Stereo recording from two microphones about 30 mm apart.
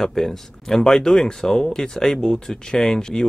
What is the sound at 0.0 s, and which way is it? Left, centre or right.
Speech, centre.